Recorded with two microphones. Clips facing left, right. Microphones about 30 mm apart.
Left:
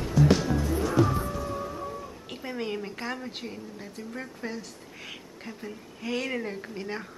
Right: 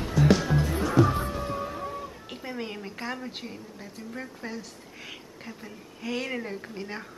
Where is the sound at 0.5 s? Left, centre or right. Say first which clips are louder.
Right 1 dB; right.